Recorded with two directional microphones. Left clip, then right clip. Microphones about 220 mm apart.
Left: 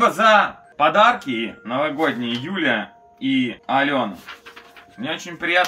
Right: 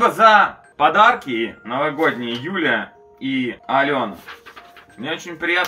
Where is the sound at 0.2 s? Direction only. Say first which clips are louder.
Right 3 dB; 30° left (ahead or behind).